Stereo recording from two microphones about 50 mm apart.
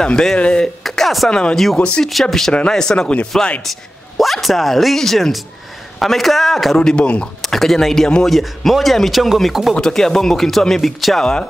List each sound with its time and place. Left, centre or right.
0.0 s speech: centre
0.8 s a sound: centre
1.3 s speech: centre
2.0 s speech: centre
4.2 s speech: centre
6.9 s speech: left
7.4 s speech: centre
9.8 s speech: centre